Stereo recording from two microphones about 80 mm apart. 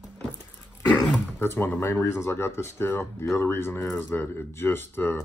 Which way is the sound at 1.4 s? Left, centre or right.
Left.